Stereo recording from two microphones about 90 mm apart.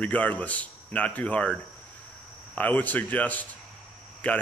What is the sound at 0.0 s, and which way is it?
Speech, 15° left (ahead or behind).